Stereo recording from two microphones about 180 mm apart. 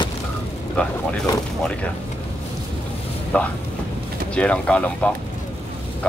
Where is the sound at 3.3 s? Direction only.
10° left (ahead or behind).